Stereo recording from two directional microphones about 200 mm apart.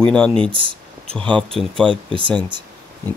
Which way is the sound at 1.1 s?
5° left (ahead or behind).